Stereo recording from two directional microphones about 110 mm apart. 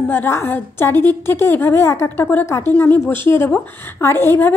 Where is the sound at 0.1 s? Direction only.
20° left (ahead or behind).